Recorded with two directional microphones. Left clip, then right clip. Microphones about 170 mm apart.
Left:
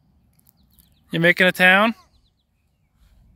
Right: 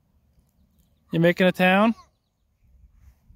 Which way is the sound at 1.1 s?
25° right (ahead or behind).